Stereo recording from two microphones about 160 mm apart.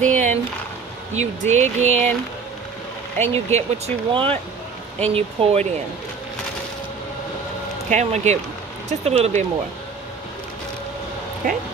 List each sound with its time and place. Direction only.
0.0 s a sound: 50° right (ahead or behind)
1.1 s speech: 45° right (ahead or behind)
3.2 s speech: 45° right (ahead or behind)
7.9 s speech: 45° right (ahead or behind)
11.4 s speech: 60° right (ahead or behind)